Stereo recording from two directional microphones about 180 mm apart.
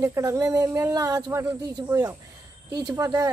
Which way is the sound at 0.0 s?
15° right (ahead or behind).